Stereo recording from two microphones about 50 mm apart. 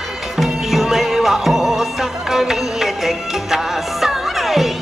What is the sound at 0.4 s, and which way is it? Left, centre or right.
Music, centre.